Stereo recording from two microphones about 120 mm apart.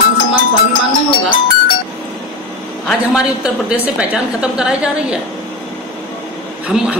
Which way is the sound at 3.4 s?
10° right (ahead or behind).